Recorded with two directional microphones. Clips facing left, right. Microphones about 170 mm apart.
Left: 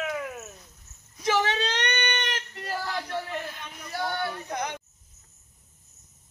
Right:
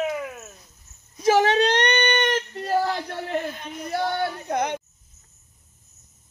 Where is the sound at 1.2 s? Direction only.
40° right (ahead or behind).